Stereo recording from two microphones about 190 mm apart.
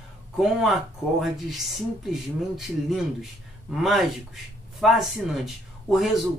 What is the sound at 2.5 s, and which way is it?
Speech, centre (ahead or behind).